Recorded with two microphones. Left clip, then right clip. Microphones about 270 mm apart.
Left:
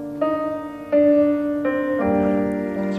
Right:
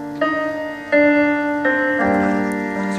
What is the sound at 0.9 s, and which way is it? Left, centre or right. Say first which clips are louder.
Music: right 1 dB; right.